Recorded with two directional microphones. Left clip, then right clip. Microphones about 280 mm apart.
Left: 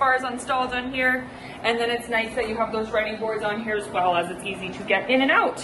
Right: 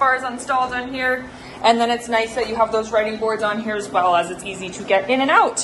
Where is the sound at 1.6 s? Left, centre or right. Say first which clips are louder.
Right 7 dB; centre.